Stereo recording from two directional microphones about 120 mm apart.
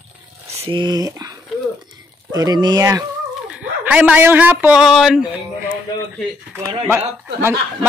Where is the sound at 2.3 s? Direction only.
35° right (ahead or behind).